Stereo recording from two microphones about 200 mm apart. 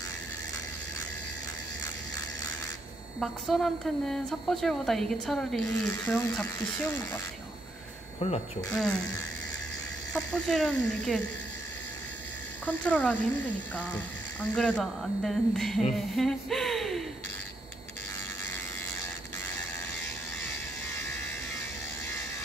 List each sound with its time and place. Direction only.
3.2 s a woman's voice: centre (ahead or behind)
8.2 s speech: 35° left (ahead or behind)
8.7 s a woman's voice: 5° left (ahead or behind)
10.1 s a woman's voice: 5° left (ahead or behind)
12.6 s speech: 5° left (ahead or behind)
16.2 s a sound: centre (ahead or behind)